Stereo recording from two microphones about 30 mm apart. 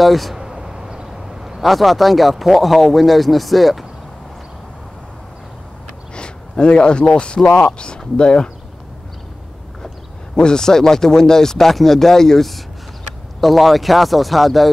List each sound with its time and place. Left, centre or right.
0.0 s speech: centre
0.4 s a sound: centre
1.6 s speech: centre
6.1 s a sound: left
7.4 s speech: left
10.3 s speech: left
13.4 s speech: centre